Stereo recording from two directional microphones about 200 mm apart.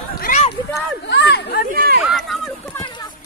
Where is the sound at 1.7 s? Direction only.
50° right (ahead or behind).